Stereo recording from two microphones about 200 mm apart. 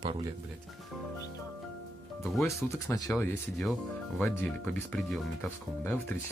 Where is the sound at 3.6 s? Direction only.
Centre (ahead or behind).